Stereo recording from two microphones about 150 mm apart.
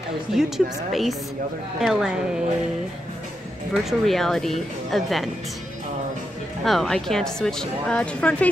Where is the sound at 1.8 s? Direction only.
Centre (ahead or behind).